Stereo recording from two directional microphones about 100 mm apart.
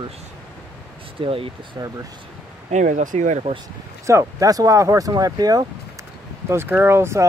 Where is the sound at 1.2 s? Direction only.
65° right (ahead or behind).